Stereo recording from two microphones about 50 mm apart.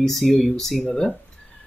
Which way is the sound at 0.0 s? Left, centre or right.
Centre.